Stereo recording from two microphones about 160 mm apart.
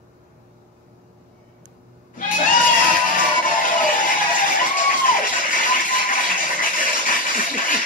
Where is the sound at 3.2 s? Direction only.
55° left (ahead or behind).